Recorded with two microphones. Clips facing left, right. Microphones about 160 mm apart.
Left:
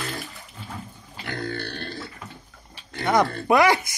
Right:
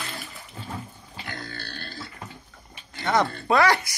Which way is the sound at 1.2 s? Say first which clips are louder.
Left 8 dB; 65° left (ahead or behind).